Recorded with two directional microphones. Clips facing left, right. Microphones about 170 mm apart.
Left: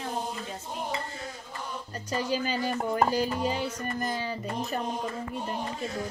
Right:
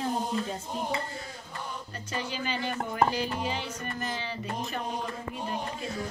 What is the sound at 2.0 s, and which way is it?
Speech, 40° left (ahead or behind).